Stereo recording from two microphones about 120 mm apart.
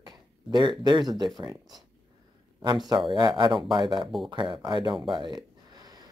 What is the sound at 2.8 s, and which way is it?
Speech, 40° right (ahead or behind).